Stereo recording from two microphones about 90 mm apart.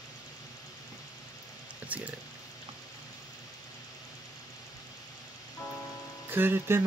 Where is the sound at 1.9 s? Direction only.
15° right (ahead or behind).